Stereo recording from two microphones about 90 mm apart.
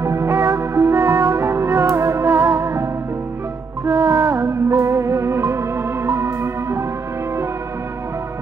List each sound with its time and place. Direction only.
0.0 s music: 30° right (ahead or behind)